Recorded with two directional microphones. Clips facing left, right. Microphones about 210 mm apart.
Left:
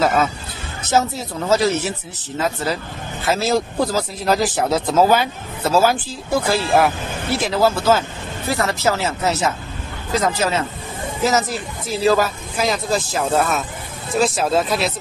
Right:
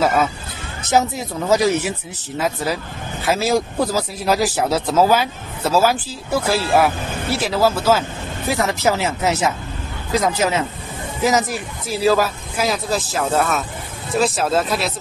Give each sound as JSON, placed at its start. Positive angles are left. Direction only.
{"t": 0.0, "sound": "speech", "side_deg": -10}